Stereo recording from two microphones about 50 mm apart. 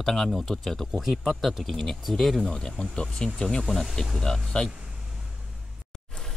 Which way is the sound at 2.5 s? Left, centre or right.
Centre.